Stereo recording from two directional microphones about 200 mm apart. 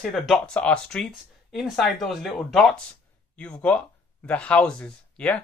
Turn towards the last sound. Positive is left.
turn(degrees=5)  # may be behind; listen again after turning